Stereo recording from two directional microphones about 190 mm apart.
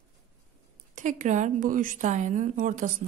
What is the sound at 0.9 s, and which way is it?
A woman's voice, 40° right (ahead or behind).